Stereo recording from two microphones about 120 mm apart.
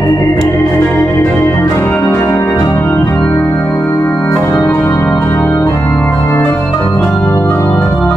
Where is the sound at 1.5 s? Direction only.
25° left (ahead or behind).